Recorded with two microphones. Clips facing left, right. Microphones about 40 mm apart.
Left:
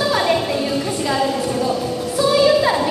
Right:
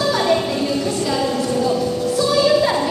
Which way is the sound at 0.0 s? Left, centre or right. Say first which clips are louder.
Even; centre.